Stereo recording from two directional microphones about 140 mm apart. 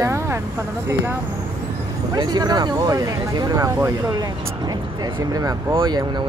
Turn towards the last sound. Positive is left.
turn(degrees=-30)  # may be behind; listen again after turning